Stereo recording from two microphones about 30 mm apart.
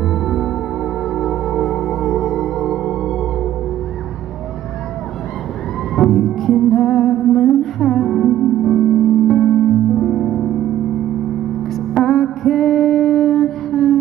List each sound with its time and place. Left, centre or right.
0.1 s music: centre
5.9 s music: centre
12.0 s music: centre